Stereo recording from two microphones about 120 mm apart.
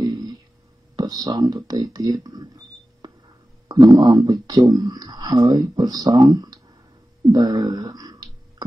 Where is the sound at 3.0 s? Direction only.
35° right (ahead or behind).